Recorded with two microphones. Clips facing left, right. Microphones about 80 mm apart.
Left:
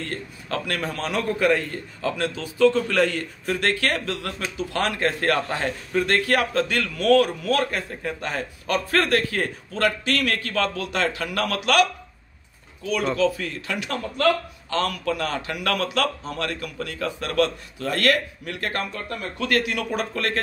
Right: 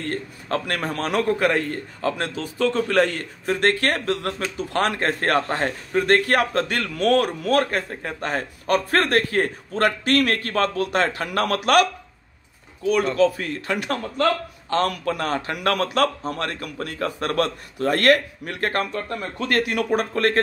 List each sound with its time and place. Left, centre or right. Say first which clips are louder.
0.0 s a man's voice: right 3 dB; right
13.2 s a man's voice: right 3 dB; right